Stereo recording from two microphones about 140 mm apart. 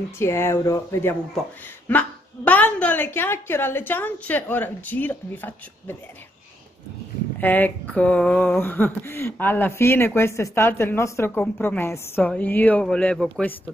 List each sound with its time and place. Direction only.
0.2 s speech: 20° left (ahead or behind)
7.3 s speech: 15° left (ahead or behind)